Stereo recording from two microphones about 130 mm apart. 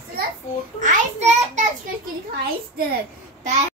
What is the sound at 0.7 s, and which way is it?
Speech, 70° right (ahead or behind).